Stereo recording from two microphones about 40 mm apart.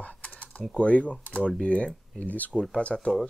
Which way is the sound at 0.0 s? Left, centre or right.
Left.